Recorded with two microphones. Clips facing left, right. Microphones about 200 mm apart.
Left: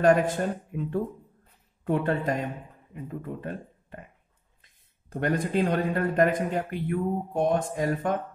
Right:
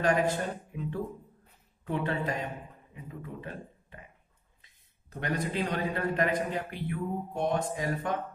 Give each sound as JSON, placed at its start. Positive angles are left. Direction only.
{"t": 0.0, "sound": "a man's voice", "side_deg": 45}
{"t": 5.1, "sound": "a man's voice", "side_deg": 50}